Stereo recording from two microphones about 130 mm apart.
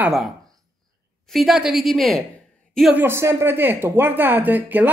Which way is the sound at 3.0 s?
20° right (ahead or behind).